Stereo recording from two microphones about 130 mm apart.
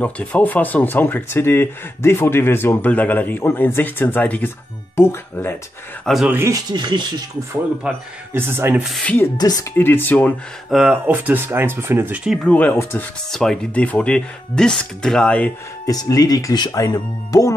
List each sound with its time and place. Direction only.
0.0 s speech: 10° left (ahead or behind)
6.0 s speech: centre (ahead or behind)
6.3 s speech: 20° right (ahead or behind)
6.7 s speech: 35° right (ahead or behind)
7.8 s speech: 15° right (ahead or behind)
8.8 s speech: centre (ahead or behind)
9.4 s speech: 30° left (ahead or behind)
9.8 s speech: 15° left (ahead or behind)
10.7 s speech: 5° right (ahead or behind)
11.1 s speech: 15° right (ahead or behind)
12.4 s speech: 10° left (ahead or behind)
15.9 s speech: 30° left (ahead or behind)